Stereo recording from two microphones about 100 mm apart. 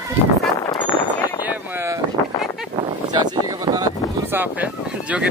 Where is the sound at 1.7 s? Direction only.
25° right (ahead or behind).